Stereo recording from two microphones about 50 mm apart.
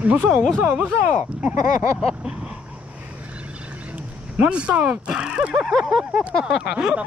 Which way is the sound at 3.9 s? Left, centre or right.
Right.